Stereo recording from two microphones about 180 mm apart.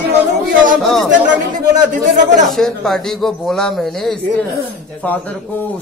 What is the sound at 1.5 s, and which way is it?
Speech, 45° right (ahead or behind).